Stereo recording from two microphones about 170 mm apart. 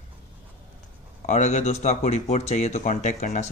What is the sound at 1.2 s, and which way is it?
Speech, 45° left (ahead or behind).